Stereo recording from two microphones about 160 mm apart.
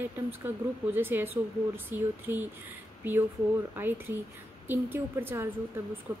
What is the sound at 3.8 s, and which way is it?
Speech, 15° right (ahead or behind).